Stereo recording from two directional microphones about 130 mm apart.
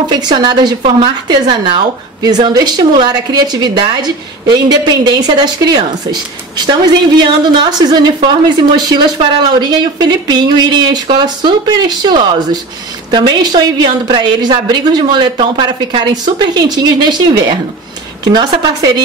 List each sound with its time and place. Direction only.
0.1 s a woman's voice: 30° right (ahead or behind)
18.3 s a woman's voice: 30° right (ahead or behind)